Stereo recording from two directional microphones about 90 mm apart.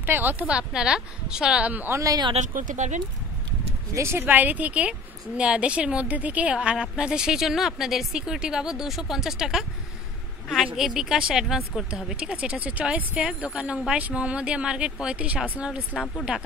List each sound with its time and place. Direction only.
0.0 s a woman's voice: 20° right (ahead or behind)
2.0 s speech: 40° right (ahead or behind)
3.9 s a woman's voice: 30° right (ahead or behind); by 15.8 s 15° right (ahead or behind)